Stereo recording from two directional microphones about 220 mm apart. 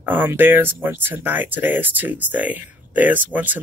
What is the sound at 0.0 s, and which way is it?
Speech, 10° right (ahead or behind).